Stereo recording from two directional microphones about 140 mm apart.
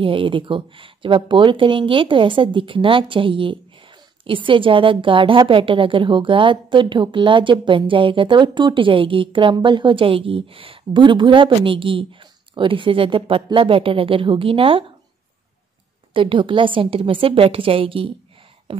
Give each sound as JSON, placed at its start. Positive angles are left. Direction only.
{"t": 0.0, "sound": "a woman's voice", "side_deg": -40}
{"t": 16.1, "sound": "a woman's voice", "side_deg": -35}